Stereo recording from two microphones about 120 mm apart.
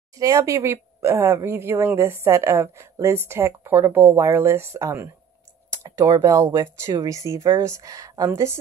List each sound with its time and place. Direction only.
0.1 s speech: 30° right (ahead or behind)
5.7 s a sound: 25° right (ahead or behind)
6.2 s speech: 25° right (ahead or behind)